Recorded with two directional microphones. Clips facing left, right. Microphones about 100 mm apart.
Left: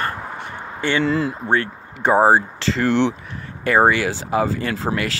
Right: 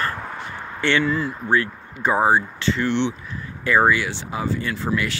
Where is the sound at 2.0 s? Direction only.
30° left (ahead or behind).